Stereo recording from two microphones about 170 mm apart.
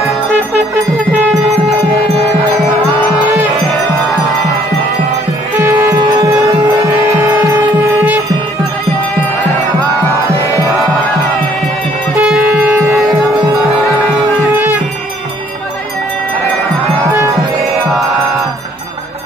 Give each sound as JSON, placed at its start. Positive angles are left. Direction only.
{"t": 1.1, "sound": "music", "side_deg": -10}
{"t": 3.2, "sound": "music", "side_deg": -10}
{"t": 5.6, "sound": "music", "side_deg": -15}
{"t": 12.2, "sound": "music", "side_deg": -5}
{"t": 14.5, "sound": "music", "side_deg": -10}
{"t": 17.0, "sound": "music", "side_deg": -15}